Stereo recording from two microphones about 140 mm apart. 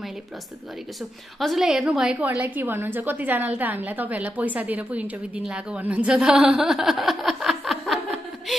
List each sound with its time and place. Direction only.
1.4 s a woman's voice: centre (ahead or behind)
8.5 s music: centre (ahead or behind)